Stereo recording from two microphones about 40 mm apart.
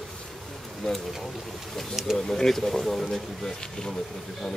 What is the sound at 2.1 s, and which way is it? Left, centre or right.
Speech, centre.